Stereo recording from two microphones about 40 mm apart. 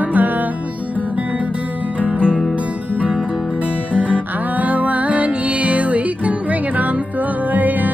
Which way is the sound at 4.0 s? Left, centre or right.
Right.